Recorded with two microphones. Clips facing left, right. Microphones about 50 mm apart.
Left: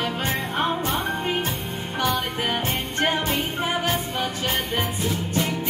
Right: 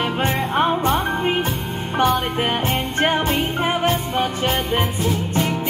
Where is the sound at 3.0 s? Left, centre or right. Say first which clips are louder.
Right 4 dB; right.